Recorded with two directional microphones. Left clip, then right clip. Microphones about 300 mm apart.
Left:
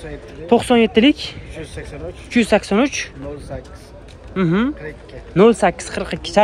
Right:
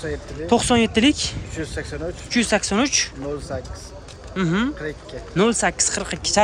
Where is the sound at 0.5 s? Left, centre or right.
Centre.